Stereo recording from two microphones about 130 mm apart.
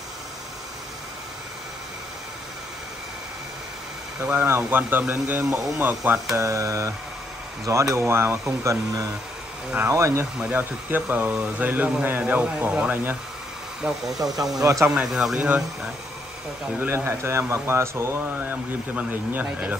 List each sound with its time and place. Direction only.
4.2 s speech: 15° right (ahead or behind)
7.9 s speech: 20° right (ahead or behind)
14.2 s speech: 30° right (ahead or behind)
14.9 s speech: 5° right (ahead or behind)
16.8 s speech: 20° right (ahead or behind)